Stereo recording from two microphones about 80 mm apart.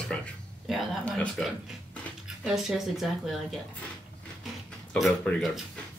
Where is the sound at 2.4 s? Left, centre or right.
Centre.